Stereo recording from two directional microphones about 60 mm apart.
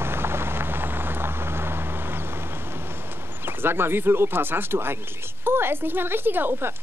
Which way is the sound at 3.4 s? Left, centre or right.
Right.